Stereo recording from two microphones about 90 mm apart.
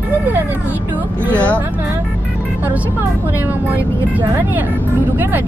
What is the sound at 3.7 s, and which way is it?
Speech, 20° right (ahead or behind).